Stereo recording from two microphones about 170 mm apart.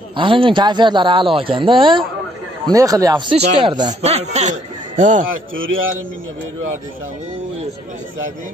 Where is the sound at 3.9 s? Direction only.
40° right (ahead or behind).